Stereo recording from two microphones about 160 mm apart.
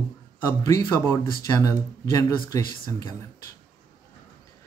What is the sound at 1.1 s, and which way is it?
Speech, 20° left (ahead or behind).